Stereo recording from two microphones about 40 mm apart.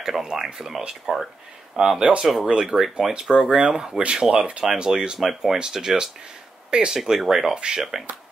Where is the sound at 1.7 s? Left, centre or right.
Centre.